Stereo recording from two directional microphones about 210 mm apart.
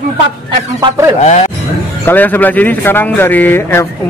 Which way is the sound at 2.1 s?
10° left (ahead or behind).